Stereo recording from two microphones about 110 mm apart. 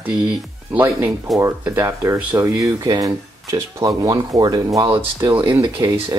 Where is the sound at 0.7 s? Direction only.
20° right (ahead or behind).